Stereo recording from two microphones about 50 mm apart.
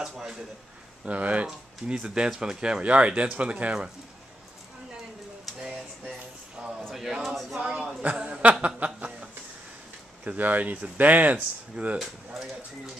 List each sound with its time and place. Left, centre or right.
0.0 s speech: centre
1.0 s speech: right
2.0 s speech: centre
6.6 s a sound: centre
8.0 s a sound: right
10.2 s speech: right